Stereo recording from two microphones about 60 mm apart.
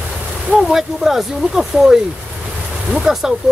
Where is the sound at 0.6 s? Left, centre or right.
Centre.